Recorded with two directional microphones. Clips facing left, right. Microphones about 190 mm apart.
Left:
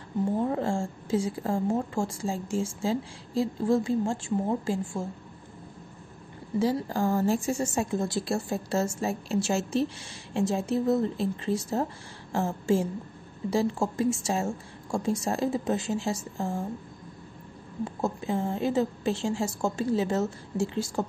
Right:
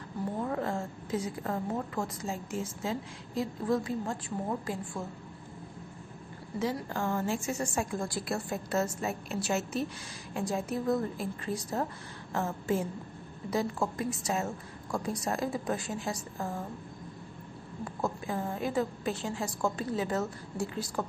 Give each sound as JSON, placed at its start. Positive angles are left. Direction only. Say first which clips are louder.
{"t": 0.4, "sound": "a woman's voice", "louder": "left 5 dB", "side_deg": 30}
{"t": 6.6, "sound": "a woman's voice", "louder": "left 6 dB", "side_deg": 35}
{"t": 17.8, "sound": "a woman's voice", "louder": "left 4 dB", "side_deg": 25}